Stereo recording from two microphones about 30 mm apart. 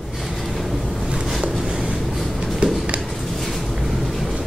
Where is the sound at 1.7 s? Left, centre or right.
Right.